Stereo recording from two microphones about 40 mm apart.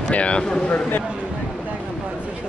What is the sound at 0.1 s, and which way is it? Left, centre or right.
Speech, left.